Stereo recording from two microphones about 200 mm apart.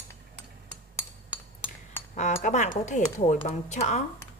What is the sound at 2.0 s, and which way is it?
Cutlery, 35° left (ahead or behind).